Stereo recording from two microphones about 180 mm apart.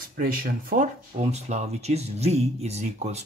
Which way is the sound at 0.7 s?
45° right (ahead or behind).